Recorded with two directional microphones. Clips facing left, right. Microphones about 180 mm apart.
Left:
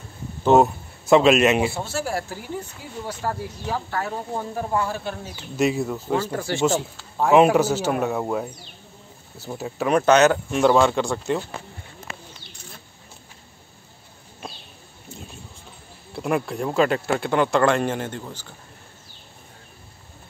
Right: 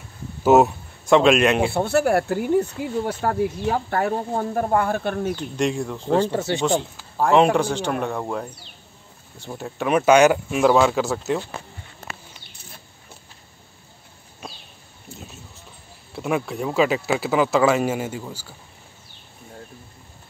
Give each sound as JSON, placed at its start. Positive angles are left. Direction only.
{"t": 0.4, "sound": "a man's voice", "side_deg": -5}
{"t": 1.7, "sound": "speech", "side_deg": -60}
{"t": 5.3, "sound": "speech", "side_deg": 5}
{"t": 6.3, "sound": "speech", "side_deg": -20}
{"t": 6.6, "sound": "speech", "side_deg": 5}
{"t": 15.1, "sound": "a sound", "side_deg": 0}
{"t": 16.2, "sound": "speech", "side_deg": 0}